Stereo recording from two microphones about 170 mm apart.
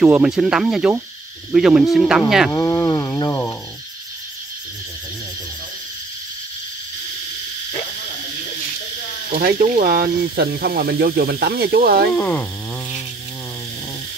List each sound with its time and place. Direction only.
0.0 s speech: 5° right (ahead or behind)
2.5 s a sound: 15° left (ahead or behind)
9.3 s speech: 60° right (ahead or behind)
12.2 s speech: 10° left (ahead or behind)